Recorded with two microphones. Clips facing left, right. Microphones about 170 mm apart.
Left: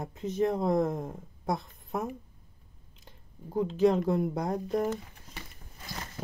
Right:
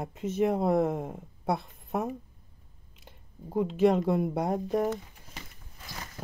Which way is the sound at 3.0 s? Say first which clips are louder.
Right 2 dB; 5° right (ahead or behind).